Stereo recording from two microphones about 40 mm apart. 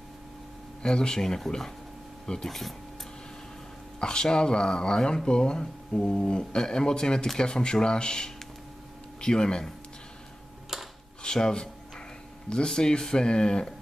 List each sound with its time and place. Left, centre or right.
0.8 s speech: centre
4.0 s speech: centre
10.7 s a sound: centre
11.2 s speech: centre